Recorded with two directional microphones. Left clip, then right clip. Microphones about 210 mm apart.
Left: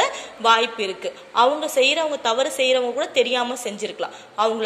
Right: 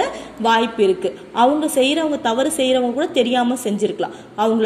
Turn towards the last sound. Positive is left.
turn(degrees=5)  # may be behind; listen again after turning